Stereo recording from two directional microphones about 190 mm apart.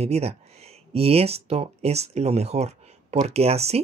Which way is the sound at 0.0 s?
35° right (ahead or behind).